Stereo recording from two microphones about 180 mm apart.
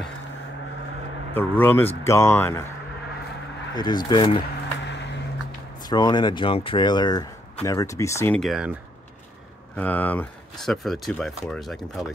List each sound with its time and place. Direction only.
1.3 s speech: 10° left (ahead or behind)
3.7 s speech: 25° left (ahead or behind)
5.8 s speech: 20° left (ahead or behind)
8.4 s speech: centre (ahead or behind)
9.8 s speech: 10° left (ahead or behind)